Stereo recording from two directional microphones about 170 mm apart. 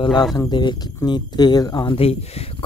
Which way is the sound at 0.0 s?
25° left (ahead or behind).